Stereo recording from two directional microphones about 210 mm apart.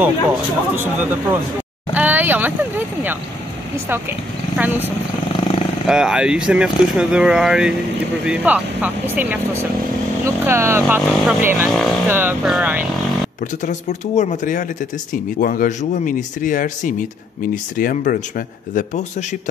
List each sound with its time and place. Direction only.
0.0 s speech: 10° right (ahead or behind)
4.6 s speech: 10° right (ahead or behind)
11.1 s speech: centre (ahead or behind)
12.1 s speech: 10° right (ahead or behind)
13.7 s speech: 35° left (ahead or behind)